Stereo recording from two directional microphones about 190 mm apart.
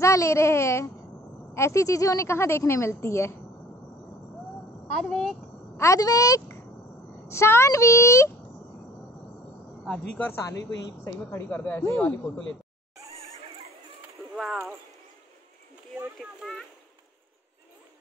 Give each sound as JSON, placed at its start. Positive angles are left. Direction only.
{"t": 0.0, "sound": "a woman's voice", "side_deg": 15}
{"t": 5.0, "sound": "speech", "side_deg": 5}
{"t": 5.8, "sound": "a woman's voice", "side_deg": 15}
{"t": 10.1, "sound": "a woman's voice", "side_deg": 10}
{"t": 14.3, "sound": "speech", "side_deg": 0}
{"t": 16.2, "sound": "a sound", "side_deg": 0}